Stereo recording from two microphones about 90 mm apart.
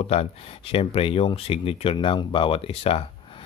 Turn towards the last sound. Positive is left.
turn(degrees=90)